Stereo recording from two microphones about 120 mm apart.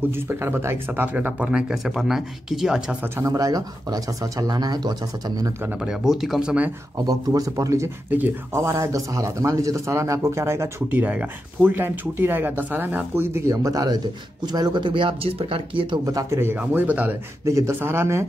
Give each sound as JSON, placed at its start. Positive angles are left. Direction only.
{"t": 0.1, "sound": "speech", "side_deg": -20}
{"t": 3.2, "sound": "speech", "side_deg": -30}
{"t": 5.8, "sound": "speech", "side_deg": -5}
{"t": 7.1, "sound": "speech", "side_deg": -30}
{"t": 16.1, "sound": "speech", "side_deg": -25}
{"t": 17.5, "sound": "speech", "side_deg": -25}